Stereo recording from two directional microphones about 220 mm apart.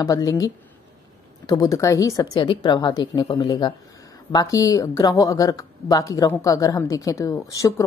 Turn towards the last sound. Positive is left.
turn(degrees=15)  # may be behind; listen again after turning